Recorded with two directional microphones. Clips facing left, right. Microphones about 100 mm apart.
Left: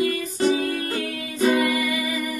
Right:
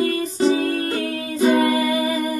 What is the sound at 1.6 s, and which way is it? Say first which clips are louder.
Music: right 4 dB; 35° right (ahead or behind).